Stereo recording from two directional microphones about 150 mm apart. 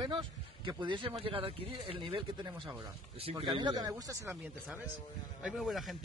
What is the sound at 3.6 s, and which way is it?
Speech, 25° right (ahead or behind).